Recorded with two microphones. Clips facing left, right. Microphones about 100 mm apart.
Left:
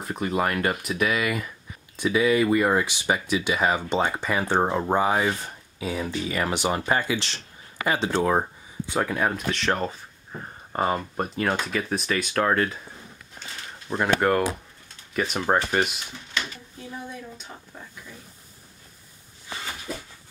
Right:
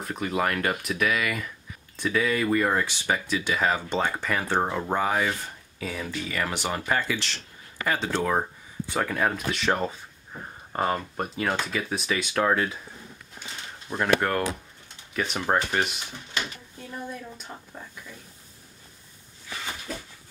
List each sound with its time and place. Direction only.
0.0 s speech: 5° left (ahead or behind)
8.9 s speech: 5° left (ahead or behind)
13.8 s speech: 10° left (ahead or behind)
16.9 s speech: centre (ahead or behind)